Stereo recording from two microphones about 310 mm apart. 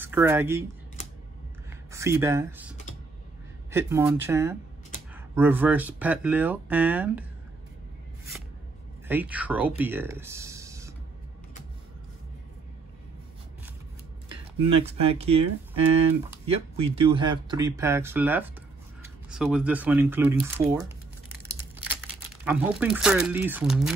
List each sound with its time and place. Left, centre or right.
0.0 s speech: centre
1.7 s speech: centre
3.7 s speech: centre
9.0 s speech: centre
14.7 s speech: centre
16.4 s speech: centre
22.4 s speech: centre